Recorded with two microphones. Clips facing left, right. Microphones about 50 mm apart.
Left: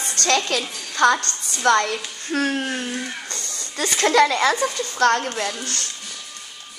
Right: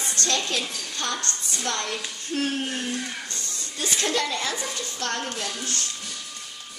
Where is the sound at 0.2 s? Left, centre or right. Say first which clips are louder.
Left 7 dB; left.